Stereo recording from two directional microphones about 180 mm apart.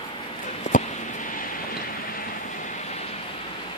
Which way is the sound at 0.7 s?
45° left (ahead or behind).